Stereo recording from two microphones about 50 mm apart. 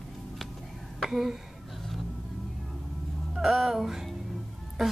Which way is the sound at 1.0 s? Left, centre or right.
Centre.